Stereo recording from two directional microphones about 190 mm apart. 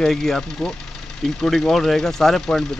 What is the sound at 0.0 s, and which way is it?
Speech, centre (ahead or behind).